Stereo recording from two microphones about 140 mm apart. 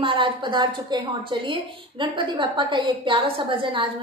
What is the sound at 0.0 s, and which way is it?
A woman's voice, 40° right (ahead or behind).